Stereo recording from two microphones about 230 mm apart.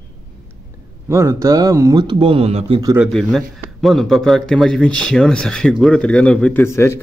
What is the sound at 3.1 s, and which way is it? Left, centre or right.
A man's voice, centre.